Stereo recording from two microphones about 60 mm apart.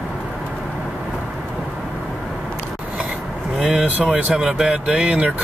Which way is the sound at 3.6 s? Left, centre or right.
Centre.